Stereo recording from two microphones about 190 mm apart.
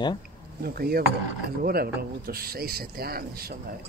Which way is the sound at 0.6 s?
55° right (ahead or behind).